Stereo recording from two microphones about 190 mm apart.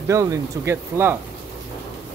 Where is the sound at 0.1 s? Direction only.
15° right (ahead or behind).